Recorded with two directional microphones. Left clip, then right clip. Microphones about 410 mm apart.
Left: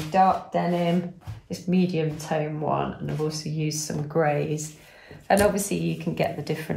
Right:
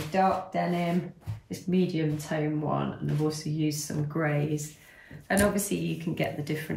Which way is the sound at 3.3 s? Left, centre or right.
Centre.